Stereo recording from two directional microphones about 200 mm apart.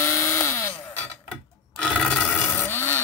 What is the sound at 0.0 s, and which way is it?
Chainsaw, 15° left (ahead or behind).